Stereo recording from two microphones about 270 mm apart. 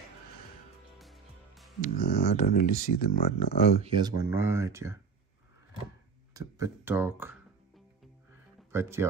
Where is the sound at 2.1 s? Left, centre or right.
Left.